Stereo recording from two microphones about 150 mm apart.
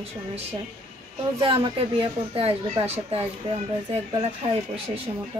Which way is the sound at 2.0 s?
40° right (ahead or behind).